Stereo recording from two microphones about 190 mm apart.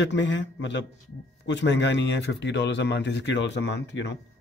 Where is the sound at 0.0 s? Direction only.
70° left (ahead or behind).